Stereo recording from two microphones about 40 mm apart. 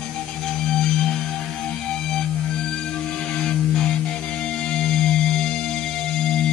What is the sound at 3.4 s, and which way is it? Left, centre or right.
Music, centre.